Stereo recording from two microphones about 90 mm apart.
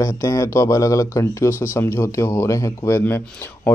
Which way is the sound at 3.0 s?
25° left (ahead or behind).